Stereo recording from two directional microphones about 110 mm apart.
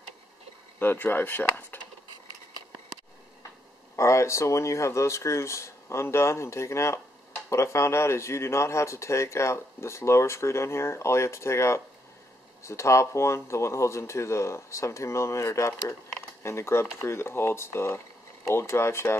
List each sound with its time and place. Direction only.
0.7 s speech: 15° left (ahead or behind)
3.9 s speech: 25° left (ahead or behind)